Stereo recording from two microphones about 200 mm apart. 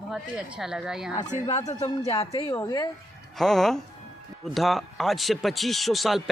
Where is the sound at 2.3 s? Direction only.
20° left (ahead or behind).